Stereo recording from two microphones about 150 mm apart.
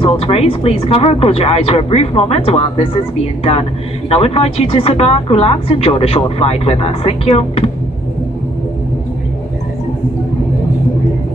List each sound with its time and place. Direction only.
0.0 s speech: 40° left (ahead or behind)
4.1 s speech: 40° left (ahead or behind)